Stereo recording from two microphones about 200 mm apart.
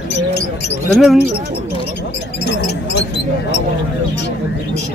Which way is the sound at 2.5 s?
60° left (ahead or behind).